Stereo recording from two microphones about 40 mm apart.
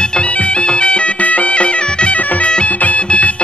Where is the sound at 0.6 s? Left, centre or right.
Left.